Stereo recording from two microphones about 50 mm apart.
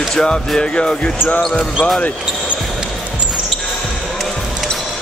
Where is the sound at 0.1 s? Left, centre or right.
Centre.